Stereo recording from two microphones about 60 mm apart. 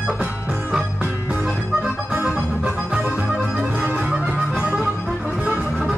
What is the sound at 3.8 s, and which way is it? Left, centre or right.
Music, right.